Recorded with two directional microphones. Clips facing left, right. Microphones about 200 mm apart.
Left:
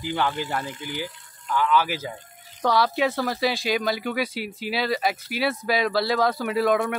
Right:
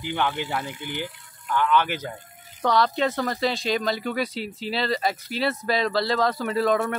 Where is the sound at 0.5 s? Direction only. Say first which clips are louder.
Even; 10° right (ahead or behind).